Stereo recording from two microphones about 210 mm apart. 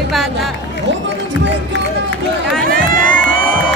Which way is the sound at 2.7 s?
40° right (ahead or behind).